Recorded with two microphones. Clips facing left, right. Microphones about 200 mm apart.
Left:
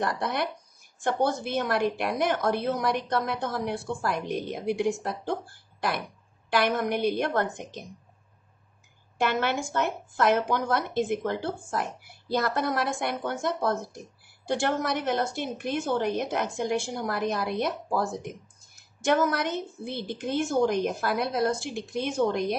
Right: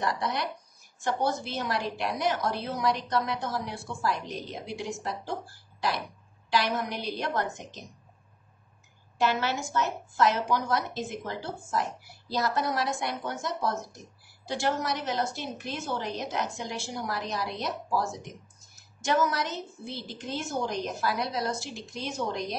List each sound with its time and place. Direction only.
0.0 s a woman's voice: 55° left (ahead or behind)
9.2 s a woman's voice: 55° left (ahead or behind)